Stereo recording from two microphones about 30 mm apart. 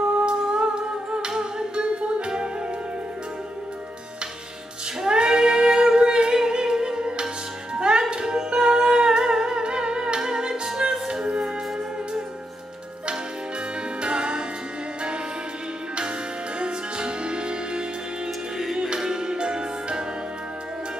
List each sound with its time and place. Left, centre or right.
0.1 s humming: right
1.8 s music: right
5.0 s female singing: right
6.3 s music: right
14.0 s music: right
16.5 s music: right
18.9 s music: right